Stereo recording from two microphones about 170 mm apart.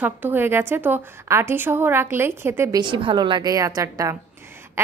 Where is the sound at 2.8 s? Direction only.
30° right (ahead or behind).